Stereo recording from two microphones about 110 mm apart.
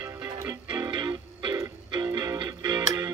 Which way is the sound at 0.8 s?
45° right (ahead or behind).